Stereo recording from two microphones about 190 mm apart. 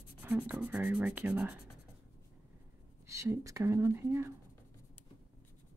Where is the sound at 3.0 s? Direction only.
15° right (ahead or behind).